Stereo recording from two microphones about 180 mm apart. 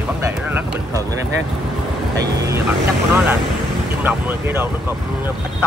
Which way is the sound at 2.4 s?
15° right (ahead or behind).